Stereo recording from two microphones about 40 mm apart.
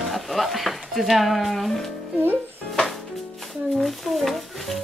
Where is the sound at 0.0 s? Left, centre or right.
Centre.